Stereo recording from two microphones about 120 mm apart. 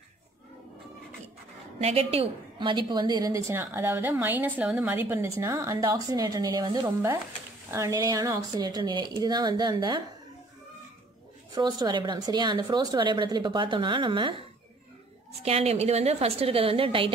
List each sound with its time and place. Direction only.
1.8 s a woman's voice: 60° right (ahead or behind); by 6.9 s 35° right (ahead or behind)
7.7 s a woman's voice: 25° right (ahead or behind)
11.5 s a woman's voice: 35° right (ahead or behind)
15.4 s a woman's voice: 55° right (ahead or behind)